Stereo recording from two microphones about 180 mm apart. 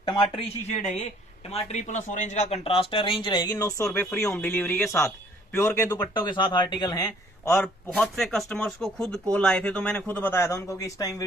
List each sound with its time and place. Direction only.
0.0 s speech: 30° left (ahead or behind)
7.5 s speech: 5° left (ahead or behind)